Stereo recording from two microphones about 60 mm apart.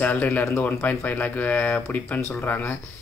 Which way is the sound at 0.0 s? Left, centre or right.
Left.